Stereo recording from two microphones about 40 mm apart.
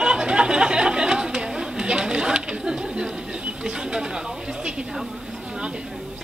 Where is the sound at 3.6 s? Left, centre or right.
Centre.